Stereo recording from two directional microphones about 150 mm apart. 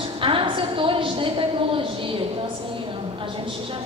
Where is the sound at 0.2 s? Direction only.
35° right (ahead or behind).